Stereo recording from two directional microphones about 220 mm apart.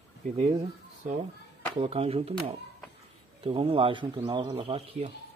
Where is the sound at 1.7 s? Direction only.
25° right (ahead or behind).